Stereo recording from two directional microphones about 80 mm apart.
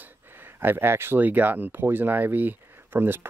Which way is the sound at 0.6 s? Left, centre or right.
Right.